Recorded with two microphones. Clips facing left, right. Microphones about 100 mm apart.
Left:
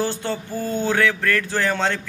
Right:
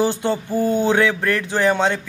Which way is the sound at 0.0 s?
15° right (ahead or behind).